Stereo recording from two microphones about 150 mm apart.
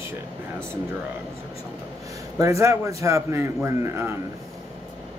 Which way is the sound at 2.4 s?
20° right (ahead or behind).